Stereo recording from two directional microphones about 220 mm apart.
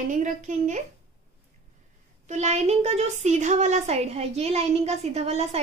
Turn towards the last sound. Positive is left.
turn(degrees=-30)  # may be behind; listen again after turning